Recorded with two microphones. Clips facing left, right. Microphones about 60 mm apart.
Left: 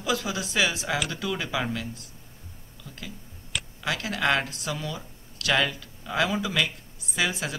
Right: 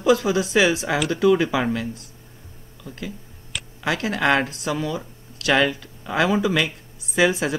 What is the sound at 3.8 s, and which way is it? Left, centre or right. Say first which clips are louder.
Speech: right 6 dB; centre.